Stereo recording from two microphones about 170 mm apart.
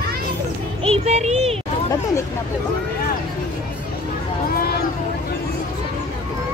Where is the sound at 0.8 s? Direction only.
35° right (ahead or behind).